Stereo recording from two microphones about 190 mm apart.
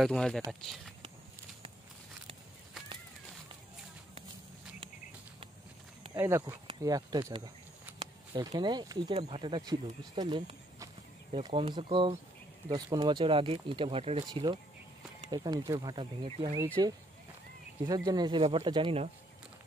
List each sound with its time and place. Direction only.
0.0 s speech: 5° left (ahead or behind)
6.0 s speech: 15° right (ahead or behind)
16.5 s speech: 15° right (ahead or behind)